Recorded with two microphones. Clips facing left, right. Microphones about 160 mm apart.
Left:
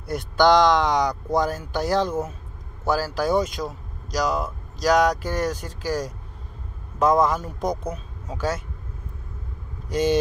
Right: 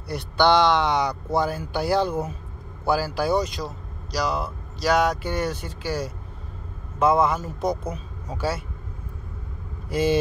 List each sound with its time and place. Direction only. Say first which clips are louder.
0.1 s speech: left 2 dB; 5° right (ahead or behind)
5.2 s speech: left 1 dB; 40° left (ahead or behind)
7.0 s speech: left 1 dB; 5° right (ahead or behind)
9.8 s speech: even; 5° right (ahead or behind)